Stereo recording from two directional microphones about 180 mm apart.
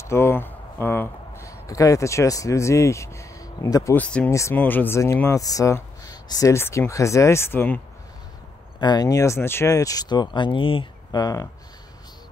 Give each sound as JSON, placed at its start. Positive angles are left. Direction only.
{"t": 0.0, "sound": "speech", "side_deg": 15}
{"t": 8.7, "sound": "speech", "side_deg": 25}